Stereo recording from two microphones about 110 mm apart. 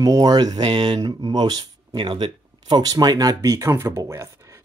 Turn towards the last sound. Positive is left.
turn(degrees=-25)  # may be behind; listen again after turning